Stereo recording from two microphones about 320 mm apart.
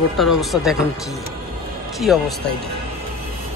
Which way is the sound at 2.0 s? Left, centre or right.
Centre.